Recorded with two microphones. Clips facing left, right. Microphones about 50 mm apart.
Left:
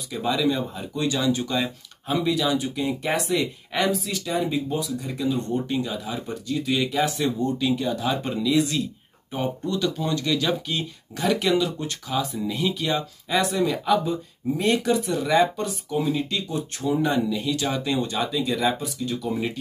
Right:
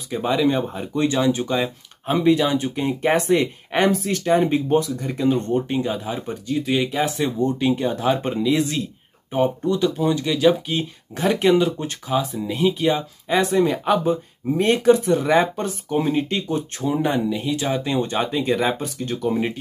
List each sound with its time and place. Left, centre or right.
0.1 s speech: right
5.7 s speech: right
19.3 s speech: right